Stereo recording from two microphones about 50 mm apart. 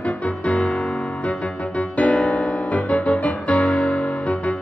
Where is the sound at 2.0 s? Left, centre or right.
Left.